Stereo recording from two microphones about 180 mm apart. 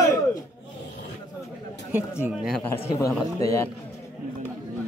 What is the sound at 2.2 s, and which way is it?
Speech, 5° right (ahead or behind).